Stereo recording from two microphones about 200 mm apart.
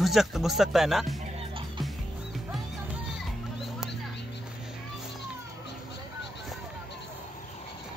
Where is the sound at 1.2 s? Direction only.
25° right (ahead or behind).